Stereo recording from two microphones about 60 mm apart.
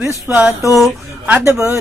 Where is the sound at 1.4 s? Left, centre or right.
Right.